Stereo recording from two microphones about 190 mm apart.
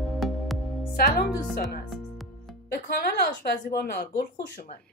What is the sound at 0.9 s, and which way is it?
Speech, 50° left (ahead or behind).